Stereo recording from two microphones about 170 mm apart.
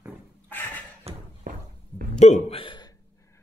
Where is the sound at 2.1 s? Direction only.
40° left (ahead or behind).